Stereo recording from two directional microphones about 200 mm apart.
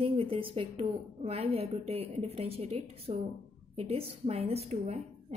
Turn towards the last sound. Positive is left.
turn(degrees=-35)  # may be behind; listen again after turning